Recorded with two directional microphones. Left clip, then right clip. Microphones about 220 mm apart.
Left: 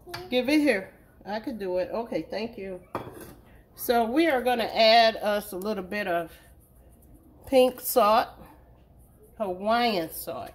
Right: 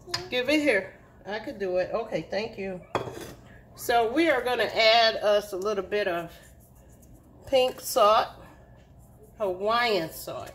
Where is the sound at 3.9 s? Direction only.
55° left (ahead or behind).